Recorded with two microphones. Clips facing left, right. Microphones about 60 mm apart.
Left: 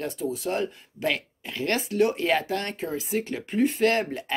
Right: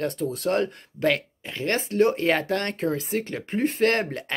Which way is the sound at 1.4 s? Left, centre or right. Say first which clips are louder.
Right 1 dB; right.